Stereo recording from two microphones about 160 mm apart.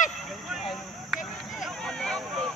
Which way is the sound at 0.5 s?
Centre (ahead or behind).